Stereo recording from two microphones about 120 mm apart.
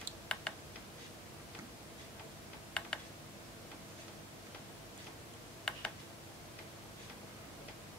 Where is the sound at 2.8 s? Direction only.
10° left (ahead or behind).